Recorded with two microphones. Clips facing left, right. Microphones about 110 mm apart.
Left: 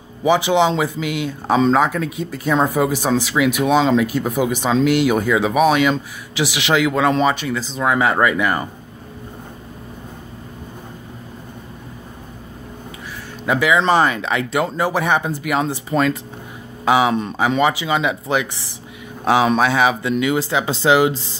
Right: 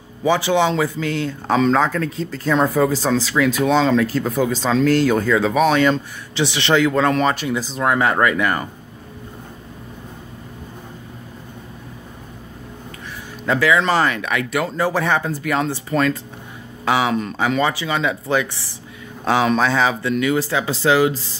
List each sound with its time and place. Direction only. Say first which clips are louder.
0.2 s speech: left 2 dB; 15° left (ahead or behind)
7.3 s speech: right 1 dB; 5° right (ahead or behind)
7.8 s speech: left 1 dB; 5° left (ahead or behind)
13.5 s speech: left 1 dB; 15° left (ahead or behind)